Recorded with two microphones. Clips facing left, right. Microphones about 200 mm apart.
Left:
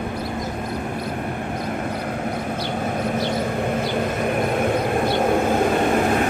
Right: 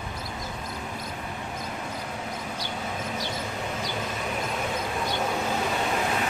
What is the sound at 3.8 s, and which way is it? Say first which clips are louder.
Vehicle: left 10 dB; 60° left (ahead or behind).